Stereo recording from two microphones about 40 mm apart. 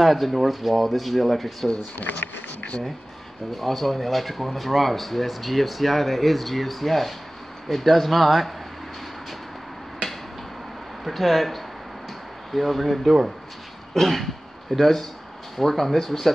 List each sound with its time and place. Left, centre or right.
0.0 s speech: centre
2.0 s speech: left
3.5 s speech: centre
11.1 s speech: centre